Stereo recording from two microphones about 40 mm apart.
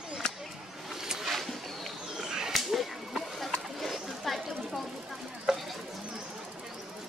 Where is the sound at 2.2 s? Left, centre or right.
Centre.